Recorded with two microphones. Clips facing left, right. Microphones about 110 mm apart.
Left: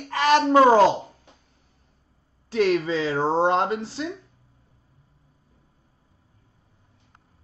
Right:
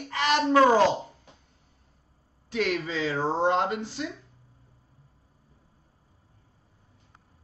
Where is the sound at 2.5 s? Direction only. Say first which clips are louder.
Left 7 dB; 30° left (ahead or behind).